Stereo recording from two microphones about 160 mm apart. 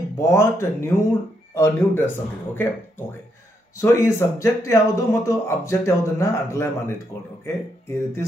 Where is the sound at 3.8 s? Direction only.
15° left (ahead or behind).